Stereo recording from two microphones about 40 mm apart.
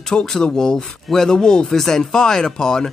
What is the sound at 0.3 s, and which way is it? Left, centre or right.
Speech, centre.